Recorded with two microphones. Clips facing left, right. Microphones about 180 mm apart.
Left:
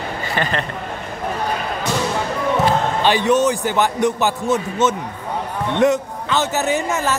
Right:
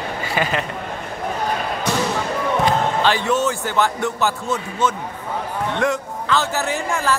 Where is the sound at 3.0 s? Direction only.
15° left (ahead or behind).